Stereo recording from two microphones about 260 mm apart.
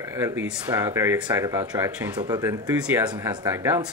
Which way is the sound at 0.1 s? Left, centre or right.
Centre.